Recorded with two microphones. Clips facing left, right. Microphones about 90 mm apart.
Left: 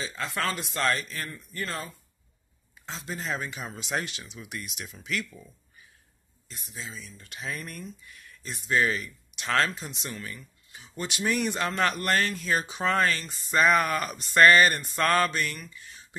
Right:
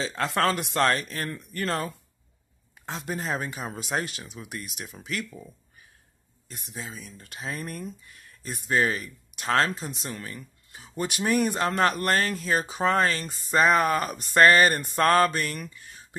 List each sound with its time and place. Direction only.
0.4 s speech: 55° right (ahead or behind)
1.3 s speech: 60° right (ahead or behind); by 5.5 s 30° right (ahead or behind)
6.5 s speech: 55° right (ahead or behind)
7.2 s speech: 35° right (ahead or behind)
15.6 s a sound: 45° right (ahead or behind)